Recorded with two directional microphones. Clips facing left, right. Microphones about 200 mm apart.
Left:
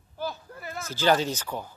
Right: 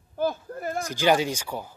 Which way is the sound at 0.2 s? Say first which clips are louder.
Right 8 dB; 50° right (ahead or behind).